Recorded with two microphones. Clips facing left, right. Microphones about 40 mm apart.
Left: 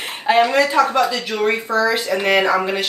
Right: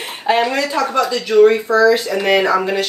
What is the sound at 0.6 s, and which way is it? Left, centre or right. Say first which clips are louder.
Speech: left 2 dB; centre.